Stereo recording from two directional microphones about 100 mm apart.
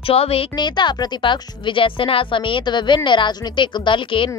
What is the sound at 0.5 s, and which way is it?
Speech, 50° left (ahead or behind).